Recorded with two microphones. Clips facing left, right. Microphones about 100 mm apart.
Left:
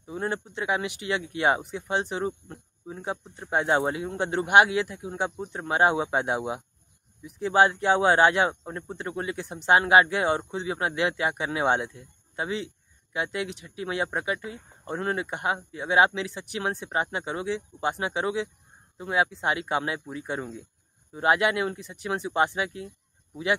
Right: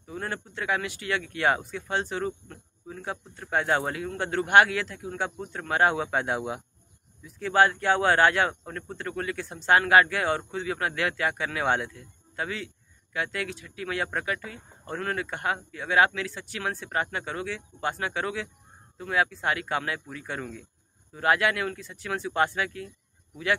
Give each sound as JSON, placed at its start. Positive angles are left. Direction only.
{"t": 0.0, "sound": "speech", "side_deg": 20}